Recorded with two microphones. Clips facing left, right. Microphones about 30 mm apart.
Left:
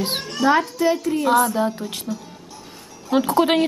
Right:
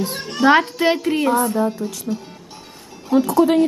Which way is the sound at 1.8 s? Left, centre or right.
Left.